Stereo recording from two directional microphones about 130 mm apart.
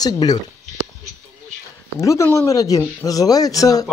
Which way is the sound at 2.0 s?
25° left (ahead or behind).